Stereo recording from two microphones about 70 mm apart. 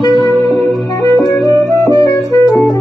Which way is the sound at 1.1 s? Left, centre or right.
Left.